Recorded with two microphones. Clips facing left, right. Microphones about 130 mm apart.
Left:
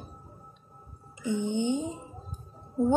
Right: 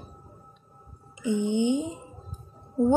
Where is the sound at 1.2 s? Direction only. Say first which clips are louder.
Right 4 dB; 15° right (ahead or behind).